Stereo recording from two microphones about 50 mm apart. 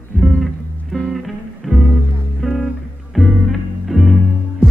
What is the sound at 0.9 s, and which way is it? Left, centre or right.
Music, centre.